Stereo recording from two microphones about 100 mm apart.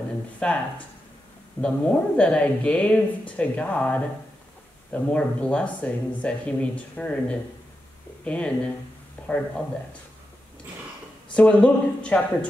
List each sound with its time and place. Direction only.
0.4 s speech: 10° left (ahead or behind)
11.3 s speech: 10° left (ahead or behind)